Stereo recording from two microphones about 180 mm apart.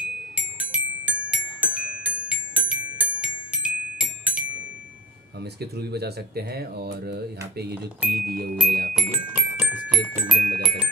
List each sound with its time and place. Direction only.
0.6 s glockenspiel: 10° right (ahead or behind)
5.4 s speech: 65° right (ahead or behind)
8.9 s music: 5° right (ahead or behind)